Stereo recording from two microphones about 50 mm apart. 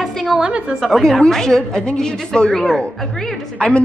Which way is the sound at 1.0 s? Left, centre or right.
Centre.